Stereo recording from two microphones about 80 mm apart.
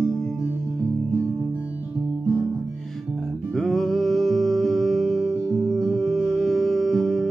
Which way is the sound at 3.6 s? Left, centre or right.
Centre.